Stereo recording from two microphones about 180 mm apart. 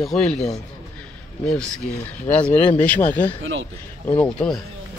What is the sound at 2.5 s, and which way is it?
Speech, 35° left (ahead or behind).